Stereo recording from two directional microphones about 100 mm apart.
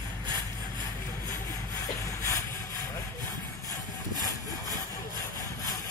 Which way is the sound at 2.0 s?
30° left (ahead or behind).